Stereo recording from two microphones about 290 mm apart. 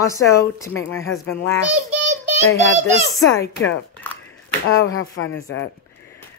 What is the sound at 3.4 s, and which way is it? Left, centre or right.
Speech, left.